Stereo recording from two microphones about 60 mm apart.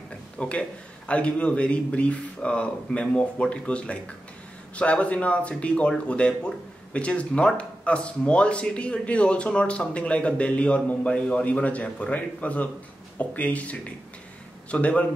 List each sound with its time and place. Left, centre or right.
0.4 s speech: left